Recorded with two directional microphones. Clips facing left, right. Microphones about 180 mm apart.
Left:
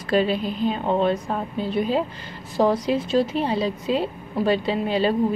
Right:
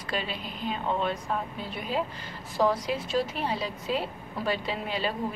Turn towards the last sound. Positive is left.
turn(degrees=30)  # may be behind; listen again after turning